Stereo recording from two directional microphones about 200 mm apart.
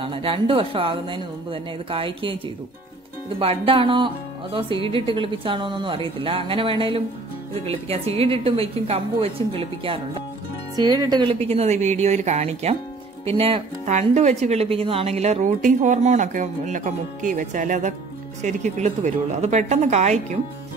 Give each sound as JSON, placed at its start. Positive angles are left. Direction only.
{"t": 0.0, "sound": "speech", "side_deg": -25}
{"t": 3.3, "sound": "speech", "side_deg": -25}